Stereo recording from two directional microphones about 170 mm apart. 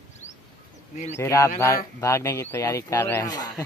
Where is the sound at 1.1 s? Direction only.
15° left (ahead or behind).